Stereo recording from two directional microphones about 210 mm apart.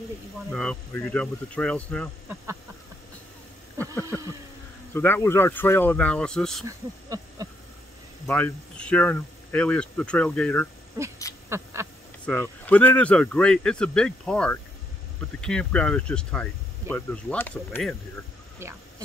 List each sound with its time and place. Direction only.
0.5 s speech: 5° left (ahead or behind)
4.9 s speech: 10° left (ahead or behind)
7.1 s a sound: 15° right (ahead or behind)
8.3 s speech: 5° left (ahead or behind)
11.4 s quack: 15° right (ahead or behind)
12.3 s speech: 10° left (ahead or behind)